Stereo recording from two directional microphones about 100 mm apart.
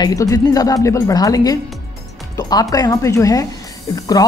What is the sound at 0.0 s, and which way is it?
Speech, 35° left (ahead or behind).